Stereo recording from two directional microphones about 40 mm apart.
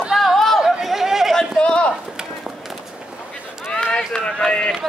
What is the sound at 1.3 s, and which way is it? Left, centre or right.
Run, centre.